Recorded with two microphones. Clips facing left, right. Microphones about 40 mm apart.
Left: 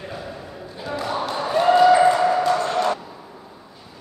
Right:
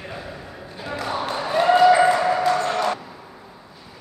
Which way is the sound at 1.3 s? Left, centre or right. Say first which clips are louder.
Left 1 dB; centre.